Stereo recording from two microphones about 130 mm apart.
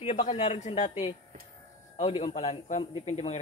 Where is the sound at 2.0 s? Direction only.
50° left (ahead or behind).